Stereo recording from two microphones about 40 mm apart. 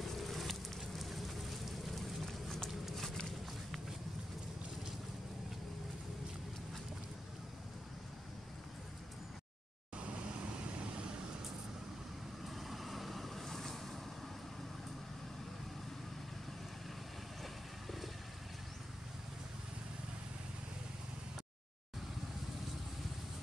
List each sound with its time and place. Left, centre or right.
0.0 s a sound: centre
2.2 s run: centre
9.9 s vehicle: right
12.4 s vehicle: centre